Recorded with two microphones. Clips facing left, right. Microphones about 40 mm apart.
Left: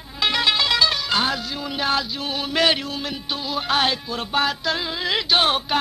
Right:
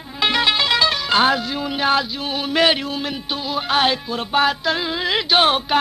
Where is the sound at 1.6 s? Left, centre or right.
Right.